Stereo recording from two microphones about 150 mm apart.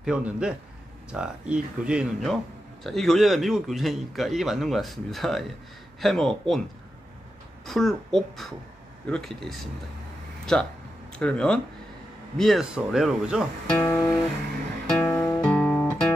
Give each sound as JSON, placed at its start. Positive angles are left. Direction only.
{"t": 0.0, "sound": "a man's voice", "side_deg": -5}
{"t": 7.6, "sound": "a man's voice", "side_deg": 0}
{"t": 13.7, "sound": "speech", "side_deg": 15}
{"t": 15.0, "sound": "music", "side_deg": 15}